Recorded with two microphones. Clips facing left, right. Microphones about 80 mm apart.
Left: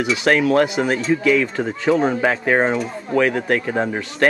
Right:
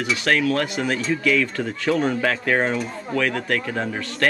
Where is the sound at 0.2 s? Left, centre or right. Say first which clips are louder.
Left 6 dB; centre.